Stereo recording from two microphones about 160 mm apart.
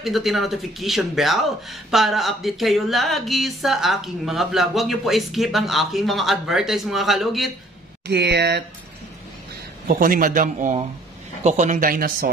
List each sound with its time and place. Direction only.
0.0 s speech: centre (ahead or behind)
8.1 s speech: 90° right
9.8 s a man's voice: 60° right (ahead or behind)